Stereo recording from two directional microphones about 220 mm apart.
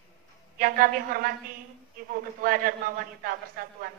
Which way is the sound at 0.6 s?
40° right (ahead or behind).